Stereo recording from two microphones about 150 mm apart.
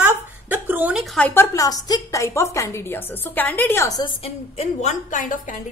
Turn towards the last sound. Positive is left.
turn(degrees=60)  # may be behind; listen again after turning